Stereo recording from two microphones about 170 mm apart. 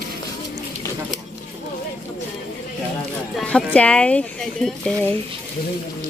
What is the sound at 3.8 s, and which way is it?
Speech, 5° left (ahead or behind).